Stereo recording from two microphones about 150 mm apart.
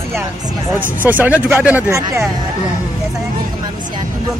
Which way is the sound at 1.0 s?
10° right (ahead or behind).